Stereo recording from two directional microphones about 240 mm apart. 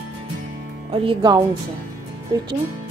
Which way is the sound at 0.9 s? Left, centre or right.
Centre.